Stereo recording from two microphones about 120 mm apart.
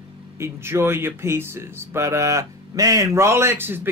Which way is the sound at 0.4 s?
20° right (ahead or behind).